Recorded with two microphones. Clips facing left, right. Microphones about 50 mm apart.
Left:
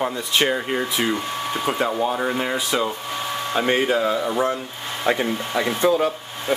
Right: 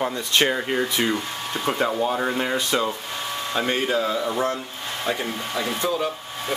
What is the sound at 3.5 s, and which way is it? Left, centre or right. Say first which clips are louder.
Speech: left 3 dB; centre.